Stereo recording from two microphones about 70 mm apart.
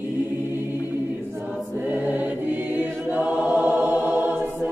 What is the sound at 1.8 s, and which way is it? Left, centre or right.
Choir, right.